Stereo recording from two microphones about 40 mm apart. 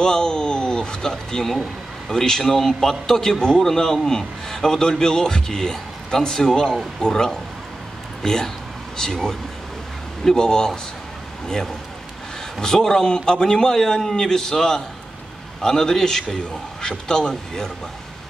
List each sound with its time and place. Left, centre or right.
0.0 s a man's voice: centre
10.2 s a man's voice: centre